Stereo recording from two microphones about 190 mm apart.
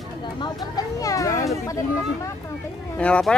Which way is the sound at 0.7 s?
20° left (ahead or behind).